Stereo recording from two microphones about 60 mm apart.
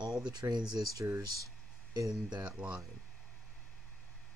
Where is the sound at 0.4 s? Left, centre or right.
Right.